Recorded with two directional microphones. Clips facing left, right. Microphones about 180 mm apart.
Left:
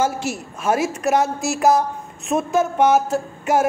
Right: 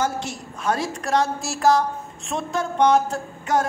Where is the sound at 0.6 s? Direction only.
20° left (ahead or behind).